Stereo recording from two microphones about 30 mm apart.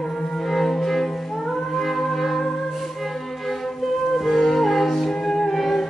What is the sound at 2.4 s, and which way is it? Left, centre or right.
Music, centre.